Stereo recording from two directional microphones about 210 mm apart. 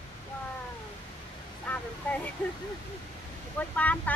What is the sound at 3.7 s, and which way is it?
Speech, 5° left (ahead or behind).